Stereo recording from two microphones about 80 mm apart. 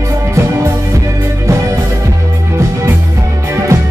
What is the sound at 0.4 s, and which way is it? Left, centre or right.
Music, right.